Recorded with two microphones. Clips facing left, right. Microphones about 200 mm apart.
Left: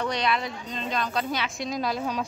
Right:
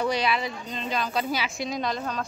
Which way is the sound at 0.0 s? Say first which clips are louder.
Right 1 dB; 5° right (ahead or behind).